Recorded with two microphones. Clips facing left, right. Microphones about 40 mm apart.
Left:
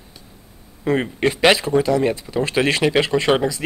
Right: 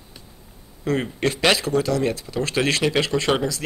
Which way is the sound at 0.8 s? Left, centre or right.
Centre.